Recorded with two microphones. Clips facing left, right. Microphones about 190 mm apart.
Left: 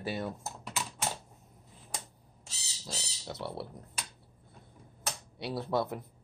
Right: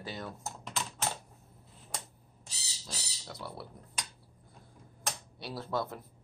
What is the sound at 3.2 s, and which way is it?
Speech, 25° left (ahead or behind).